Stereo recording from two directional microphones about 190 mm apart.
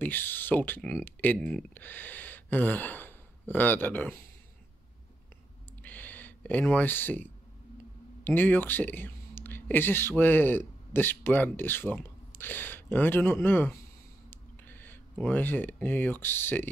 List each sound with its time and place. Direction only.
0.0 s speech: 10° left (ahead or behind)
5.8 s clicking: 10° left (ahead or behind)
8.2 s speech: 10° left (ahead or behind)